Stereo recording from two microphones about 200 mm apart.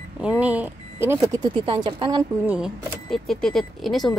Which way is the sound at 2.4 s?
5° right (ahead or behind).